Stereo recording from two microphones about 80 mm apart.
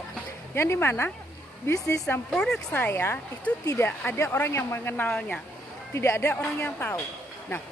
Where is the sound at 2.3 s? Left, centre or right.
Centre.